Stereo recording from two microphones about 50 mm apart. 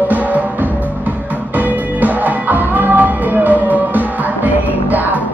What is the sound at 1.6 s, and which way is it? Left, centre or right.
Music, right.